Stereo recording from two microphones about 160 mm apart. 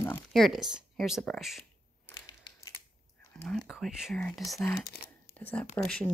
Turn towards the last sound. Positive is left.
turn(degrees=5)  # may be behind; listen again after turning